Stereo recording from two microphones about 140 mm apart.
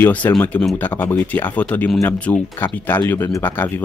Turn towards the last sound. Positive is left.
turn(degrees=15)  # may be behind; listen again after turning